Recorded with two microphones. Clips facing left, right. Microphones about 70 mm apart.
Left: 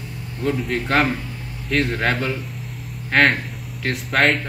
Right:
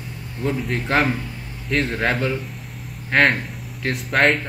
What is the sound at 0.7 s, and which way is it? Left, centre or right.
A man's voice, centre.